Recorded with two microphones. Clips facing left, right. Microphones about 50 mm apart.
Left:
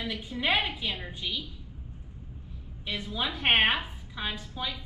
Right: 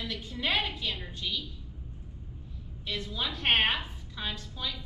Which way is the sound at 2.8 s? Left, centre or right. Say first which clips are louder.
Left 2 dB; centre.